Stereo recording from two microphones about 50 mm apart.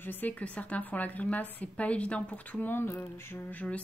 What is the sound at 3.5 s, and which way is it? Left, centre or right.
Mantra, left.